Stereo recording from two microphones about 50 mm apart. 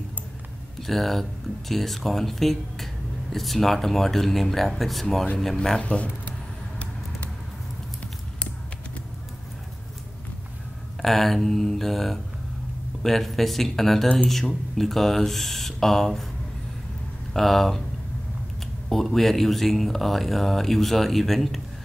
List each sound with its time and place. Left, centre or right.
0.7 s speech: centre
5.8 s speech: left
11.0 s speech: centre
17.3 s speech: centre
18.9 s speech: centre